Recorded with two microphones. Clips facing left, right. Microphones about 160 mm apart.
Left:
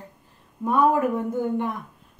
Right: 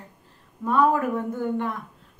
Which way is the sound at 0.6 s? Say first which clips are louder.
Left 1 dB; 15° left (ahead or behind).